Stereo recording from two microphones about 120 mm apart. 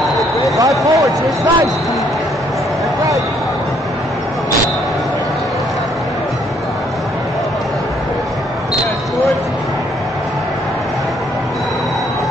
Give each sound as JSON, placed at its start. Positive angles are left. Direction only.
{"t": 0.6, "sound": "speech", "side_deg": -30}